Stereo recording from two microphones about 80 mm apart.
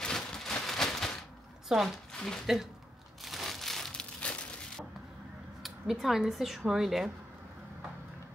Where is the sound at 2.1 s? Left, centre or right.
Centre.